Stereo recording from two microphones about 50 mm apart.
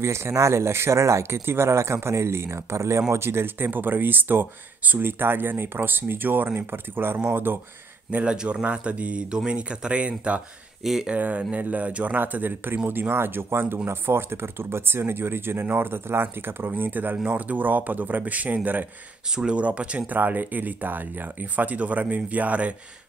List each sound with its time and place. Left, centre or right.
0.0 s speech: right
3.1 s speech: right
8.1 s speech: right
10.8 s speech: centre
11.1 s speech: right
19.2 s speech: centre
19.5 s speech: right